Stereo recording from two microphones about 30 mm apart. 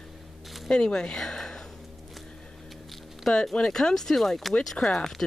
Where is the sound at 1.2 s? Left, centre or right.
Centre.